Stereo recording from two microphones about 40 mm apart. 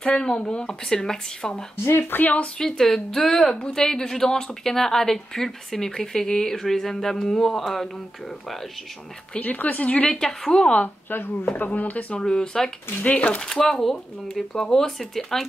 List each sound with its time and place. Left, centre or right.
0.0 s speech: centre
1.9 s speech: left
2.8 s a woman's voice: centre
9.4 s a woman's voice: left
10.0 s a woman's voice: centre
11.1 s speech: left
11.5 s speech: left
12.2 s a woman's voice: centre
13.0 s speech: left
13.4 s a woman's voice: centre